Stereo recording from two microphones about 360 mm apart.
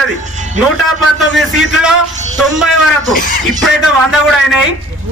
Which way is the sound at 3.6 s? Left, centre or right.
Centre.